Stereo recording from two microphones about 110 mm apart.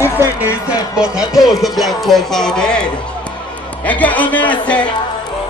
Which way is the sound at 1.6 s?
Centre (ahead or behind).